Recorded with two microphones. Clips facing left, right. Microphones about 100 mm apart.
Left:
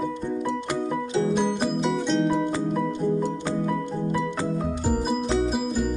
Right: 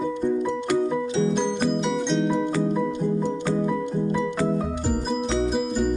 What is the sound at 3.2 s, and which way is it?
Music, 15° left (ahead or behind).